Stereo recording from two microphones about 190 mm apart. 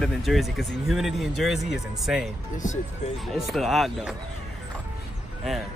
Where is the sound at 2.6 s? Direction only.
40° left (ahead or behind).